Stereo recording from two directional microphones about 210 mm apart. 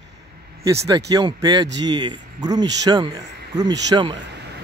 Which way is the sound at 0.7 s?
15° right (ahead or behind).